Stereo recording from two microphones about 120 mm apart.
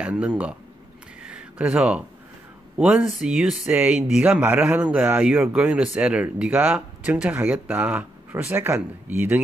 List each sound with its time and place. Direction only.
0.0 s speech: 10° right (ahead or behind)
1.2 s a sound: 10° right (ahead or behind)
2.8 s speech: 5° right (ahead or behind)
3.7 s speech: 15° right (ahead or behind)